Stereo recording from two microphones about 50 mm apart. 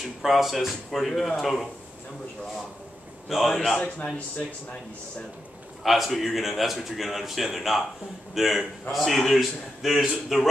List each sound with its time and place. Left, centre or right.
0.2 s a man's voice: centre
3.3 s a man's voice: centre
3.5 s a man's voice: centre
5.9 s a man's voice: centre